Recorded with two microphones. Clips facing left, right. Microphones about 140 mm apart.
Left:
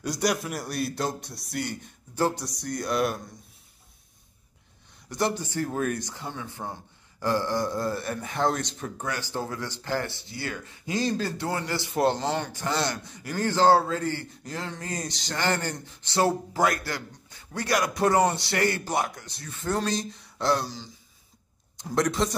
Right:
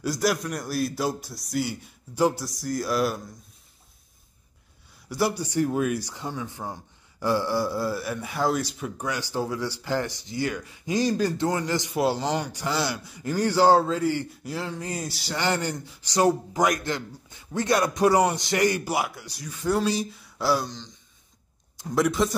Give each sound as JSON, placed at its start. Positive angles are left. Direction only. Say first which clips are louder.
{"t": 0.0, "sound": "a man's voice", "louder": "right 2 dB", "side_deg": 0}
{"t": 5.1, "sound": "a man's voice", "louder": "right 3 dB", "side_deg": -10}
{"t": 13.2, "sound": "a man's voice", "louder": "right 2 dB", "side_deg": -15}
{"t": 18.0, "sound": "a man's voice", "louder": "right 1 dB", "side_deg": -15}
{"t": 20.7, "sound": "a sound", "louder": "even", "side_deg": 5}
{"t": 21.7, "sound": "a man's voice", "louder": "right 2 dB", "side_deg": -5}